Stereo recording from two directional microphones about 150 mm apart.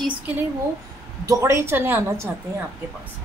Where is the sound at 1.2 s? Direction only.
20° right (ahead or behind).